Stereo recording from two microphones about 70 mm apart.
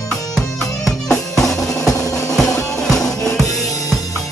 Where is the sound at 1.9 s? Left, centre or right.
Left.